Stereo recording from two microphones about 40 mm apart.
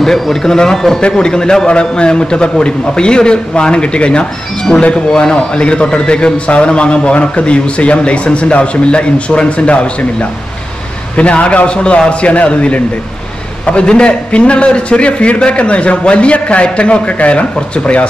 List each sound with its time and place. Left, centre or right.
0.0 s a man's voice: centre; by 10.0 s left
11.1 s a man's voice: left